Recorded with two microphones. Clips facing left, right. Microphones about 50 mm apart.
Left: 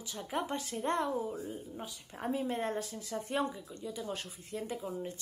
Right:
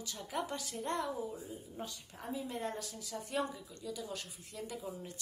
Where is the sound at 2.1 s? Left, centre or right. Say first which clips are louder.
Left 7 dB; left.